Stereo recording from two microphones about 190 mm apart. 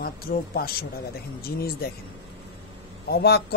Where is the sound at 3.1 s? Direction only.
55° left (ahead or behind).